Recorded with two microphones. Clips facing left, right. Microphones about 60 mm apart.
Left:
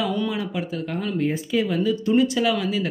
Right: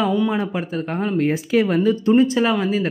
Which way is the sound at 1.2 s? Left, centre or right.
Right.